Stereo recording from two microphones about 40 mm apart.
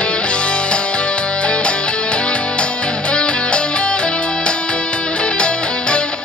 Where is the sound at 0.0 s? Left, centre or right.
Left.